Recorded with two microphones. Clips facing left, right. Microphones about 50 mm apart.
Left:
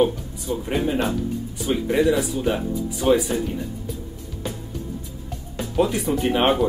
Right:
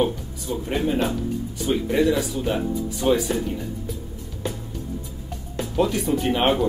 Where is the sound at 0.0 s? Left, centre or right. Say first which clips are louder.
Left 3 dB; centre.